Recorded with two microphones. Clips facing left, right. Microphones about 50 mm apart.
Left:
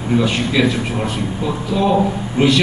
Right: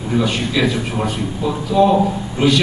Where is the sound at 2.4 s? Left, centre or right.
Left.